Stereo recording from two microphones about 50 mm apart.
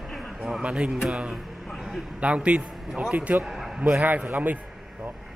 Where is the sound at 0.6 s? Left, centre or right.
Centre; by 4.3 s right.